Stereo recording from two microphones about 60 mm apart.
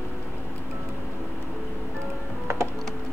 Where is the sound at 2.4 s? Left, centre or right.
Right.